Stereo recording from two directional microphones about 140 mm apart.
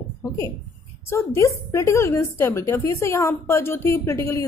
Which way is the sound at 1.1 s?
20° left (ahead or behind).